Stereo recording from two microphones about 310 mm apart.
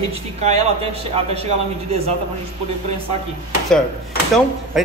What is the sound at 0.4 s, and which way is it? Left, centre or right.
A man's voice, centre.